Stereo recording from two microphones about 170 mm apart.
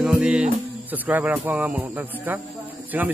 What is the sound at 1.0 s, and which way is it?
Speech, 10° right (ahead or behind).